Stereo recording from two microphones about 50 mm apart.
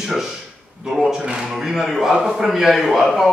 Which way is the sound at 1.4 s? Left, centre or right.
Centre.